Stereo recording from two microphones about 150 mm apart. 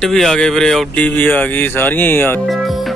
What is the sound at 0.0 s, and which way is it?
Speech, 5° left (ahead or behind).